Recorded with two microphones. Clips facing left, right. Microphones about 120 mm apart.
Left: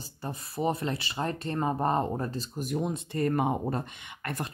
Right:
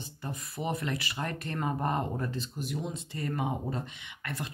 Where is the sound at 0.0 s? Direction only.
35° left (ahead or behind).